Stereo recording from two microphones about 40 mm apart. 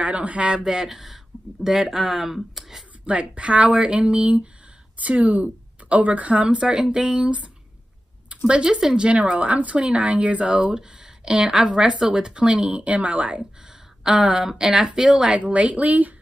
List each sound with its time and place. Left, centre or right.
0.0 s speech: right
0.7 s speech: centre
3.1 s speech: right
6.7 s speech: right
8.4 s speech: right
14.0 s speech: right